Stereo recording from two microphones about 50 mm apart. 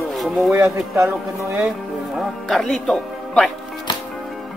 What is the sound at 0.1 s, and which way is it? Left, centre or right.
Music, centre.